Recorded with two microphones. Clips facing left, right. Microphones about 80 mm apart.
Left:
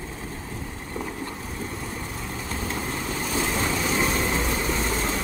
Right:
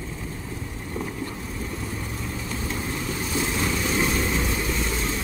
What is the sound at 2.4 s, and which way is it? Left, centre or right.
Vehicle, left.